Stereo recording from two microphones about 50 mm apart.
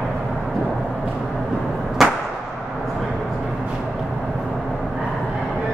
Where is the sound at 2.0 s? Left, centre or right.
Centre.